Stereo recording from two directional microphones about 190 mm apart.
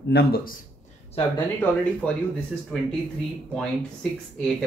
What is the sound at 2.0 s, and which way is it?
Speech, 5° left (ahead or behind).